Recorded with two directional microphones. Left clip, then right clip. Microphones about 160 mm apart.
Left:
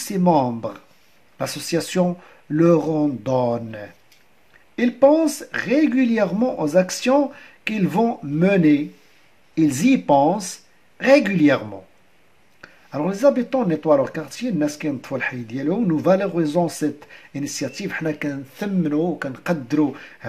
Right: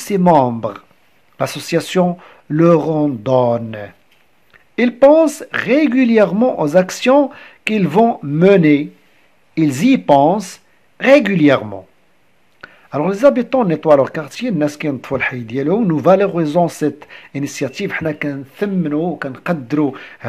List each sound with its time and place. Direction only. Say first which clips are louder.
0.0 s speech: right 7 dB; 35° right (ahead or behind)